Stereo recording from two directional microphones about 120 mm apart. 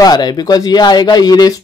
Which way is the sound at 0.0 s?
35° left (ahead or behind).